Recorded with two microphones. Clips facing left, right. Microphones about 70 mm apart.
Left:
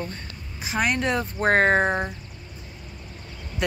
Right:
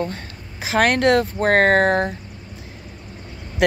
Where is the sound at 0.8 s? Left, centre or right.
Right.